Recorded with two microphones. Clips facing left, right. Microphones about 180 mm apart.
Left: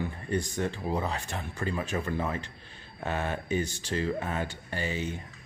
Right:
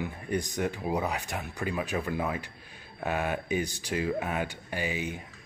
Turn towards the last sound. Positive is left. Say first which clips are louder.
# even
turn(degrees=-15)  # may be behind; listen again after turning